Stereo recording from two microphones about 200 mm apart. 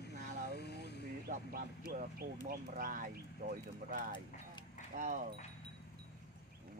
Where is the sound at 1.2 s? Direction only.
45° right (ahead or behind).